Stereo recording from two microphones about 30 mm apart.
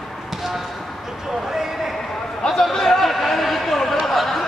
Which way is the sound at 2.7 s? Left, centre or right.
Centre.